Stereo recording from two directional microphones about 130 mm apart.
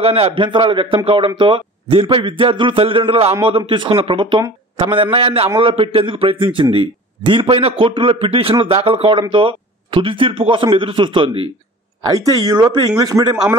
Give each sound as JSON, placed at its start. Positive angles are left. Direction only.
{"t": 0.0, "sound": "a man's voice", "side_deg": -50}
{"t": 12.1, "sound": "a man's voice", "side_deg": -30}